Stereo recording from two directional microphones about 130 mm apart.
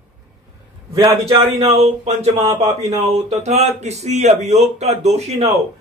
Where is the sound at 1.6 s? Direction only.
55° right (ahead or behind).